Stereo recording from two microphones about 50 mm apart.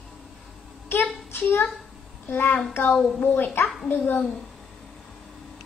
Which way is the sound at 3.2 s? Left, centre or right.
Left.